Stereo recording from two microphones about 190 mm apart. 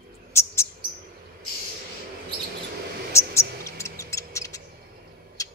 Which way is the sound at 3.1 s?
15° left (ahead or behind).